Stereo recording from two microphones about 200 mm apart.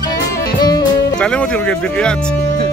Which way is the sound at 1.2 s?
5° left (ahead or behind).